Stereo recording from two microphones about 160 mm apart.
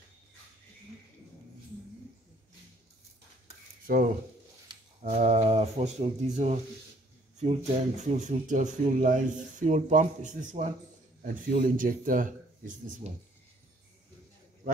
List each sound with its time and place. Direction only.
5.0 s speech: 45° right (ahead or behind)